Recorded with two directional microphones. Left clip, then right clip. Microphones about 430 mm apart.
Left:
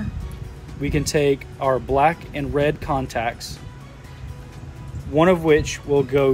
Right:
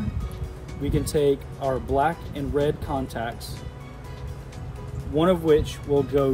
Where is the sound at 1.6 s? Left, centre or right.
Centre.